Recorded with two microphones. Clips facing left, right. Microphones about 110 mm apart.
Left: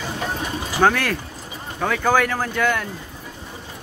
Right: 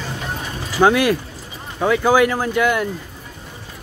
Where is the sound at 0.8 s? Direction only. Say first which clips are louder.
Right 4 dB; 10° right (ahead or behind).